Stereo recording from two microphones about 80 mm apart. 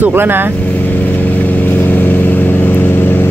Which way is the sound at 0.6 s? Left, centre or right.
Left.